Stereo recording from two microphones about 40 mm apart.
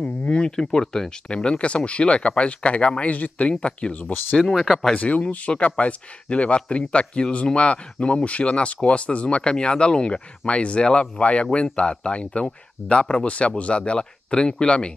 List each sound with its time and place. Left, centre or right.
0.0 s a sound: left
0.4 s speech: centre
4.6 s speech: centre
4.9 s speech: left
9.4 s speech: left